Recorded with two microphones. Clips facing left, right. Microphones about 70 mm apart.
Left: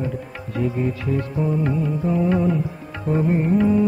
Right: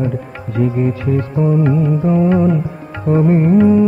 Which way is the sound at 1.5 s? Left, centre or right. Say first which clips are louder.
Right 9 dB; right.